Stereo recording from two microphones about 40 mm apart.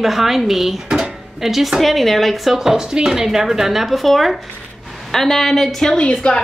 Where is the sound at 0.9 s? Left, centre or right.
Centre.